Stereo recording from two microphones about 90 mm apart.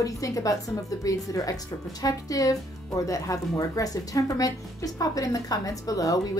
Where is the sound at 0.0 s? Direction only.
40° left (ahead or behind).